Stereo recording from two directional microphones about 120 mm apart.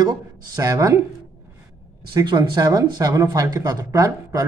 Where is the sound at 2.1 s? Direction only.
35° right (ahead or behind).